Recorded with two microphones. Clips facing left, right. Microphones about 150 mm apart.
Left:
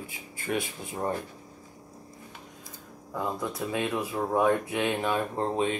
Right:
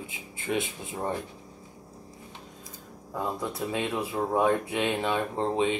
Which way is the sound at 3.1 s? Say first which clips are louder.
Even; 25° right (ahead or behind).